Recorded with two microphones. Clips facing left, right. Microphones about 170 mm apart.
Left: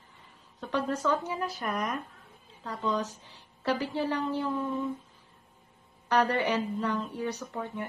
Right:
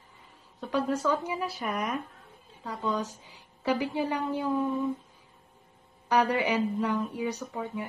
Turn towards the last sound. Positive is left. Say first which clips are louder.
# right 2 dB
turn(degrees=-10)  # may be behind; listen again after turning